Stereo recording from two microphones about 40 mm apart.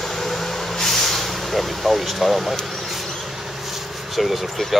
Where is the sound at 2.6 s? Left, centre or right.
Centre.